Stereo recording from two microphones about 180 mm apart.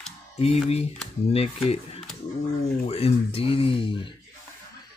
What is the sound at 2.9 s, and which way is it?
Speech, 30° left (ahead or behind).